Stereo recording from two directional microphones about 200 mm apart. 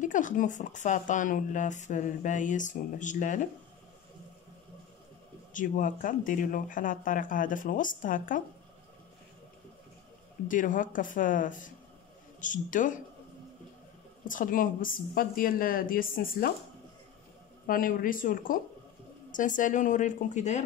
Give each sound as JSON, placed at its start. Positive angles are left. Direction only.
{"t": 0.0, "sound": "speech", "side_deg": 40}
{"t": 5.5, "sound": "speech", "side_deg": 40}
{"t": 10.5, "sound": "speech", "side_deg": 40}
{"t": 14.2, "sound": "a woman's voice", "side_deg": 40}
{"t": 17.6, "sound": "a woman's voice", "side_deg": 45}